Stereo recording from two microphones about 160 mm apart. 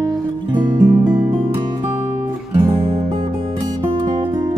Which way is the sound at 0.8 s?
5° right (ahead or behind).